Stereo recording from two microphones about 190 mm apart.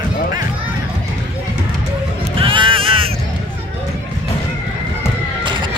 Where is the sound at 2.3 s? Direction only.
25° right (ahead or behind).